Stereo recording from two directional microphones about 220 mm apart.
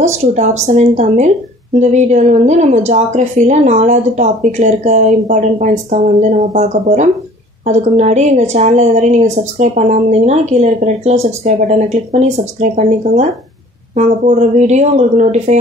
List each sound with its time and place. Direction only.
0.2 s a woman's voice: 30° right (ahead or behind)